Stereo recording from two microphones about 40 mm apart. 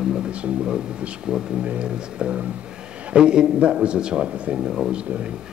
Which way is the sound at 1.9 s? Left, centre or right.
Right.